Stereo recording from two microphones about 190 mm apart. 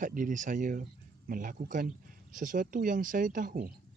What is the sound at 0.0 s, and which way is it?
Speech, 45° right (ahead or behind).